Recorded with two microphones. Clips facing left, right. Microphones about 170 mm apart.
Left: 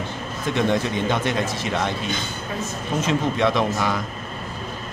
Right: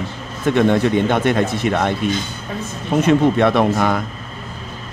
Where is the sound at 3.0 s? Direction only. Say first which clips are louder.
Right 8 dB; 55° right (ahead or behind).